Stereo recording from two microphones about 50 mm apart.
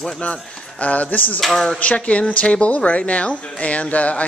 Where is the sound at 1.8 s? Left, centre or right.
Left.